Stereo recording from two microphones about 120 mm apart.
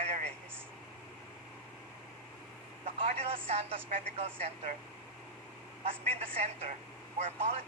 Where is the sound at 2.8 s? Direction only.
60° right (ahead or behind).